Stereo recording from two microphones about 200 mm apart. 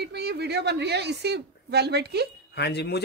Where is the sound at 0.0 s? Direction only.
55° right (ahead or behind).